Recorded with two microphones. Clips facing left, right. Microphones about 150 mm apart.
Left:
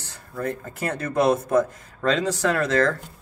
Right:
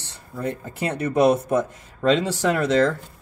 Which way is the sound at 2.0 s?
30° right (ahead or behind).